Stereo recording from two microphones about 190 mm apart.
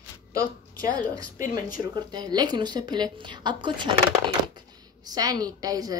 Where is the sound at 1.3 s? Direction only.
45° left (ahead or behind).